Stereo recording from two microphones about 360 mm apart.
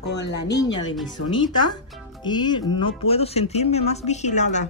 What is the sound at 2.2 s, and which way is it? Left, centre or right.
Speech, centre.